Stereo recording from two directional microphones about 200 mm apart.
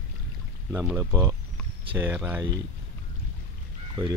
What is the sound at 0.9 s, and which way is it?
Speech, 15° right (ahead or behind).